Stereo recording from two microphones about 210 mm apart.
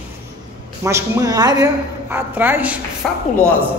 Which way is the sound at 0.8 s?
15° right (ahead or behind).